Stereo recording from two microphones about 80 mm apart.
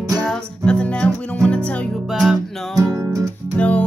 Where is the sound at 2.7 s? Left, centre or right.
Right.